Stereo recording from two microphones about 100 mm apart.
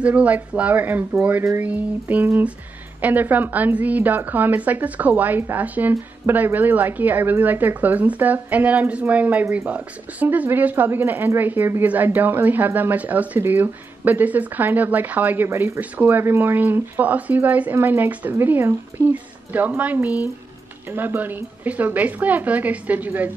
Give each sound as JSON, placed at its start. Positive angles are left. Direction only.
{"t": 0.0, "sound": "a woman's voice", "side_deg": -15}